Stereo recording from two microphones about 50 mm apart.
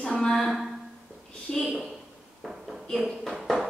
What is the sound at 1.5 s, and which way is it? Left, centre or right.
Speech, left.